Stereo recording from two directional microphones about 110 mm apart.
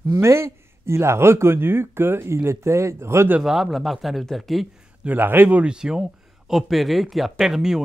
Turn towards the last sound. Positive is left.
turn(degrees=-5)  # may be behind; listen again after turning